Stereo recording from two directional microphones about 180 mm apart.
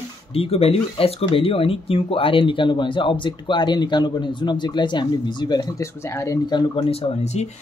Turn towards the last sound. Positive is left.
turn(degrees=40)  # may be behind; listen again after turning